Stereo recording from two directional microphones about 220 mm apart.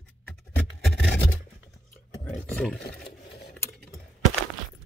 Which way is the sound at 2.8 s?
45° left (ahead or behind).